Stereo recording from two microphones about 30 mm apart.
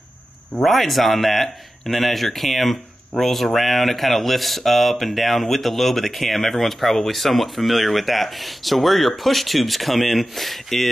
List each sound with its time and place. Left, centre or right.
0.6 s speech: centre